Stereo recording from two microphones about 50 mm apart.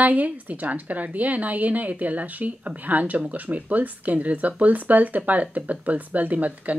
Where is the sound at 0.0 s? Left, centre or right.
Right.